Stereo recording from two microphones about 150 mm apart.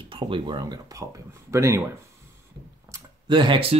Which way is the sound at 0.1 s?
35° right (ahead or behind).